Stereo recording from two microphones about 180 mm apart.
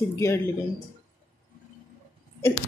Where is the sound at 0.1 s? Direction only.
15° left (ahead or behind).